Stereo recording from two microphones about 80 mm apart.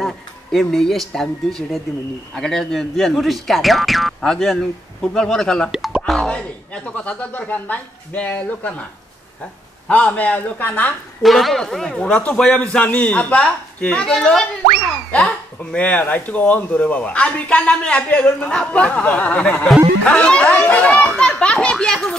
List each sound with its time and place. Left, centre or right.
0.0 s speech: centre
5.7 s plop: centre
6.2 s speech: centre
11.2 s speech: centre
15.7 s speech: centre